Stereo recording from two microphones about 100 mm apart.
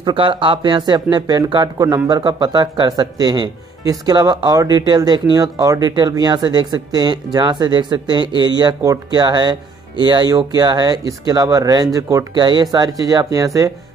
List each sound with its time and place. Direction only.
0.0 s speech: 55° right (ahead or behind)
0.6 s speech: 45° right (ahead or behind)
12.4 s speech: 45° right (ahead or behind)